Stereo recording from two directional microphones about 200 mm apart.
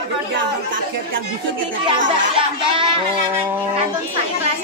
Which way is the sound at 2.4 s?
25° right (ahead or behind).